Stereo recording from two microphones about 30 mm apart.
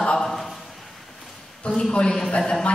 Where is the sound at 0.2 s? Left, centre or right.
Centre.